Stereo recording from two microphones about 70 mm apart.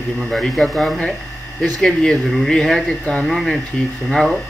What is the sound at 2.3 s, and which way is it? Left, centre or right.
Speech, centre.